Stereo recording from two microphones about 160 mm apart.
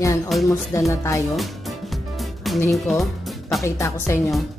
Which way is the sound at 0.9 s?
20° left (ahead or behind).